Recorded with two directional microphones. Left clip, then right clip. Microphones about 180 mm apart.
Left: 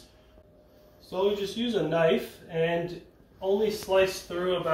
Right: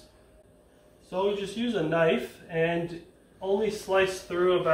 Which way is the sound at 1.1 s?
5° left (ahead or behind).